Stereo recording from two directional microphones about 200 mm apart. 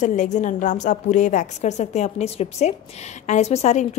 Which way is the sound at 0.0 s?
40° left (ahead or behind).